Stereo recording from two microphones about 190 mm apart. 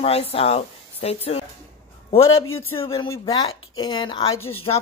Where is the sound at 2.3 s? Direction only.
90° left.